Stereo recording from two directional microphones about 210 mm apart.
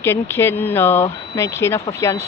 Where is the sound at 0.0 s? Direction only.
10° left (ahead or behind).